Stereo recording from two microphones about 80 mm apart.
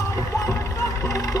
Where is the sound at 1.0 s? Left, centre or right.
Left.